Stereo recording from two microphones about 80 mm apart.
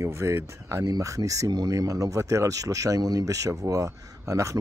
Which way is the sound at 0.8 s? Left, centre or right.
Right.